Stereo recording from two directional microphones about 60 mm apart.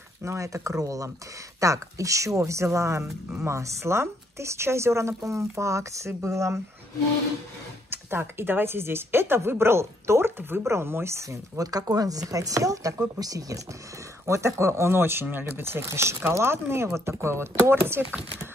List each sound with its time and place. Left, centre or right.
0.2 s a woman's voice: right
7.9 s speech: right
13.2 s speech: right
14.2 s speech: right